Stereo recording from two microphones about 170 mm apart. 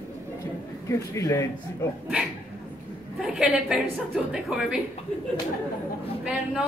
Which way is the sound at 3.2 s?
Centre (ahead or behind).